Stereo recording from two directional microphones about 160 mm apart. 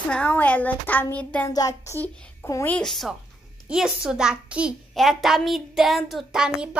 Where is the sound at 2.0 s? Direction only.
5° left (ahead or behind).